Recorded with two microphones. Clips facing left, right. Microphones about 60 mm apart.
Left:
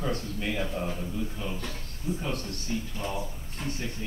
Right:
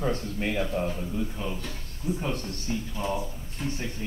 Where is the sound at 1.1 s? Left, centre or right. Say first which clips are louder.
Right 2 dB; centre.